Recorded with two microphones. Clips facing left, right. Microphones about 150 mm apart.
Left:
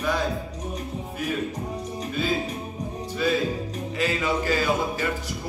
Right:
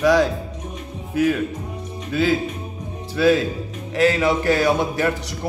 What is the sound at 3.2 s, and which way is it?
Speech, 75° right (ahead or behind).